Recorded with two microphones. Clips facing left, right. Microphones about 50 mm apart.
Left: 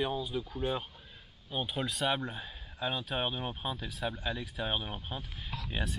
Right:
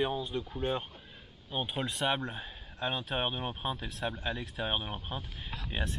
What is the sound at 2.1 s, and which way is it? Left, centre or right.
Speech, centre.